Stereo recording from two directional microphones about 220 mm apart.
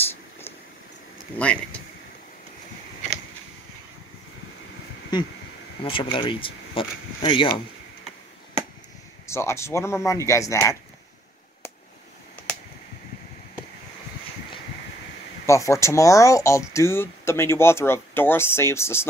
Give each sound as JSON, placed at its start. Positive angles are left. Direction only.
{"t": 1.4, "sound": "speech", "side_deg": 5}
{"t": 5.1, "sound": "speech", "side_deg": 20}
{"t": 9.3, "sound": "speech", "side_deg": 10}
{"t": 15.4, "sound": "speech", "side_deg": 15}